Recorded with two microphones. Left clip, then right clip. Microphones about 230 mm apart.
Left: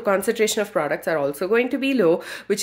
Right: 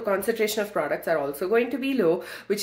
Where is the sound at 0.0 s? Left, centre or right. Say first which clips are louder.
Left 4 dB; left.